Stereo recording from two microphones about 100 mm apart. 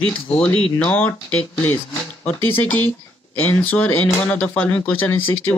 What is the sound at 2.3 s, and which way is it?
Speech, 15° left (ahead or behind).